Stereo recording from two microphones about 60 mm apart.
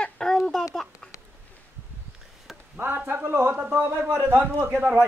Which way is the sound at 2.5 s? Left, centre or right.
Centre.